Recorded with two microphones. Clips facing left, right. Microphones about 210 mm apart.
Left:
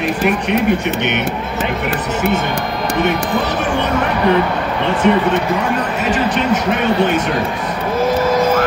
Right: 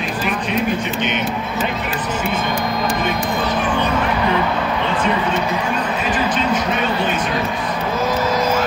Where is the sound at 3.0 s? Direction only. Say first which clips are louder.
Left 3 dB; 70° left (ahead or behind).